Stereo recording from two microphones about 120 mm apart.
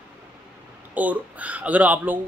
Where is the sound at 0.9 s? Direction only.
15° right (ahead or behind).